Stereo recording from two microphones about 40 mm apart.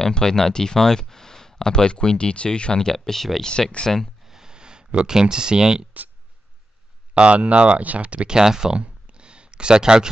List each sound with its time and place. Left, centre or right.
0.0 s speech: centre
4.2 s clicking: centre
7.2 s speech: right
8.2 s speech: centre
8.8 s a sound: right